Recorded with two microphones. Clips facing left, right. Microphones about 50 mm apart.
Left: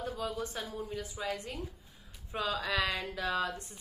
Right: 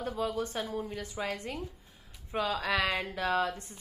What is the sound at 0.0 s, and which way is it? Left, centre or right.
Speech, right.